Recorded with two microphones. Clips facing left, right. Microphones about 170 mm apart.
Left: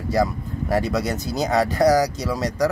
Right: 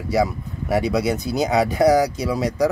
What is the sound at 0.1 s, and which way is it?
Speech, 5° right (ahead or behind).